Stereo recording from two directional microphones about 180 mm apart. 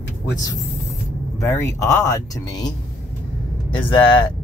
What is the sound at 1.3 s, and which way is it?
Speech, 15° left (ahead or behind).